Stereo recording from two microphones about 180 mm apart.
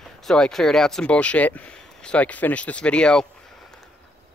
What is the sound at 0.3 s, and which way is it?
Speech, centre (ahead or behind).